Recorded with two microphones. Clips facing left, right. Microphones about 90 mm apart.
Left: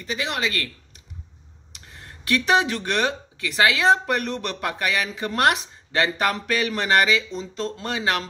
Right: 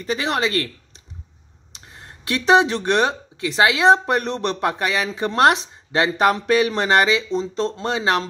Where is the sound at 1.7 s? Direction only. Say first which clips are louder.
Right 2 dB; 25° right (ahead or behind).